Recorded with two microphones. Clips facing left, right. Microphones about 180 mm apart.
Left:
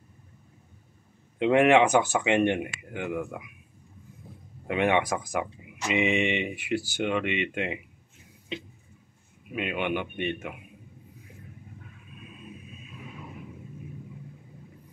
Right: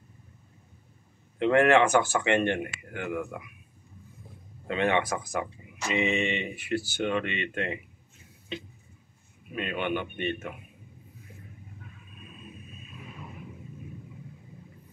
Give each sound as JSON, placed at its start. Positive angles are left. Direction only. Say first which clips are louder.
{"t": 1.4, "sound": "speech", "louder": "left 1 dB", "side_deg": 15}
{"t": 4.6, "sound": "speech", "louder": "left 2 dB", "side_deg": 15}
{"t": 9.6, "sound": "speech", "louder": "left 1 dB", "side_deg": 10}